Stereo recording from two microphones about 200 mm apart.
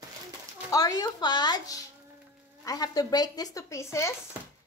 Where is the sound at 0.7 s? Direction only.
20° left (ahead or behind).